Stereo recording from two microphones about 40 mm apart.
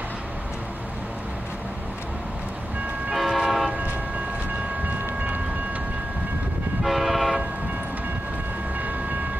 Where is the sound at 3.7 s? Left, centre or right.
Right.